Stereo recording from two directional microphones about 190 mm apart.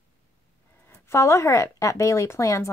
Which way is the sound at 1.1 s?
15° left (ahead or behind).